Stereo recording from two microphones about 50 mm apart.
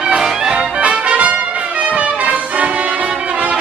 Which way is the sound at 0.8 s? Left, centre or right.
Right.